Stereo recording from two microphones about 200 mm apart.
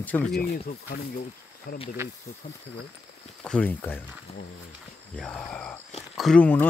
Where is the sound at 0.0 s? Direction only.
10° left (ahead or behind).